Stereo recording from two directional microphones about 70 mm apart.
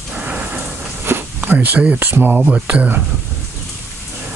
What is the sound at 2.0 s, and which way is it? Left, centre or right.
Speech, right.